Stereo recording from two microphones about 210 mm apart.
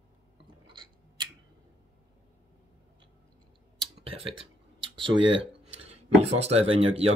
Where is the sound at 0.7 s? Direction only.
20° right (ahead or behind).